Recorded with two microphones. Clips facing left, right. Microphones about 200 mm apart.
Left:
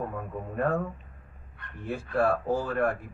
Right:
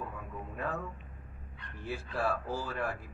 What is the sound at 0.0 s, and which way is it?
A man's voice, 55° left (ahead or behind).